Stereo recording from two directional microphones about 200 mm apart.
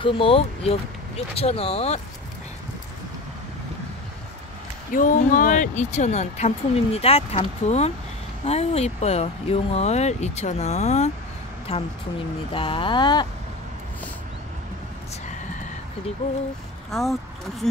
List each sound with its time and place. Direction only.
0.0 s speech: 25° left (ahead or behind)
4.9 s speech: 40° left (ahead or behind)
12.5 s speech: 25° left (ahead or behind)
16.9 s speech: centre (ahead or behind)